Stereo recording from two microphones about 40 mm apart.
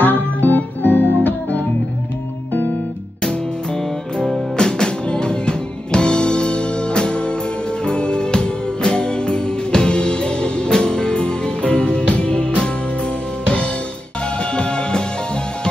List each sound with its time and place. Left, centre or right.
0.0 s music: left
4.3 s music: centre
14.4 s music: left